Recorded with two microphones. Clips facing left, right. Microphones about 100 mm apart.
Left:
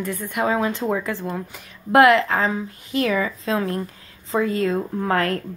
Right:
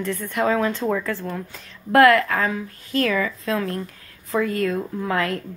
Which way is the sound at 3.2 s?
25° left (ahead or behind).